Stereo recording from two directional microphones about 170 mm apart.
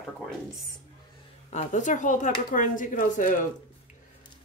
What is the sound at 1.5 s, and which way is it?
A woman's voice, 45° left (ahead or behind).